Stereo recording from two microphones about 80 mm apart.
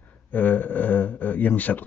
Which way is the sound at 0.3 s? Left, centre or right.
Left.